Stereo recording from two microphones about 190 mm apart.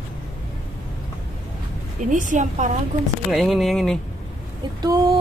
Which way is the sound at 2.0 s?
40° right (ahead or behind).